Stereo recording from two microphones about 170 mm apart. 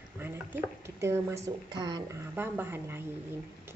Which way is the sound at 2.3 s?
10° right (ahead or behind).